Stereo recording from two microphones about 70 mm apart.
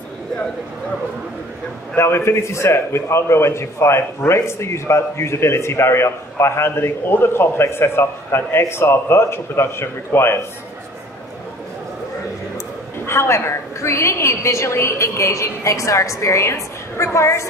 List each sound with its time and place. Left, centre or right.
2.0 s a man's voice: left
13.0 s a woman's voice: left